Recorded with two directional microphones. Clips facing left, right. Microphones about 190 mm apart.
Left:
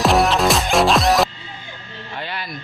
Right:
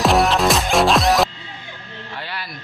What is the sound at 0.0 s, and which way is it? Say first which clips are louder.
Music: even; centre (ahead or behind).